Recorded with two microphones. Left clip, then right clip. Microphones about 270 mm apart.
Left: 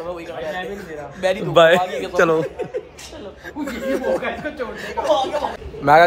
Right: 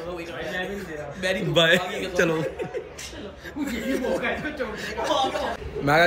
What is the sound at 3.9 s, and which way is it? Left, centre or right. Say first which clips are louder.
A man's voice: left 5 dB; centre.